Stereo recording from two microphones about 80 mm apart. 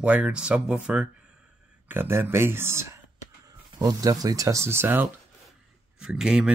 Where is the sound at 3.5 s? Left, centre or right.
Right.